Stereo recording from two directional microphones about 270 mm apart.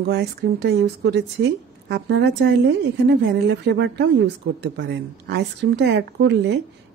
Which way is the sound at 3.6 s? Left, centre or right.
Right.